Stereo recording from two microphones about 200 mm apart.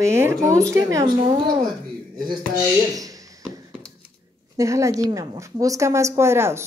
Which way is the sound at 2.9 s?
15° right (ahead or behind).